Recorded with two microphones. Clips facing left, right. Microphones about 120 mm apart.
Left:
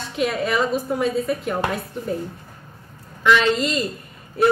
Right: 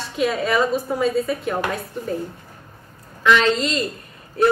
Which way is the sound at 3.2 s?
Centre (ahead or behind).